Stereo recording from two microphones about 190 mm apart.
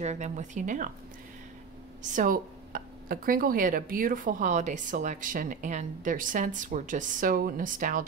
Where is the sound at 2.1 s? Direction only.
45° right (ahead or behind).